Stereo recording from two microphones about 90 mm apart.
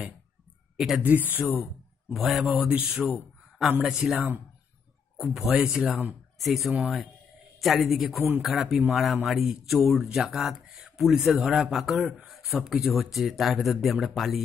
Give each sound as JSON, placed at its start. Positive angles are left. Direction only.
{"t": 0.7, "sound": "speech", "side_deg": -5}
{"t": 1.0, "sound": "speech", "side_deg": -20}
{"t": 2.1, "sound": "speech", "side_deg": 0}
{"t": 2.7, "sound": "speech", "side_deg": -15}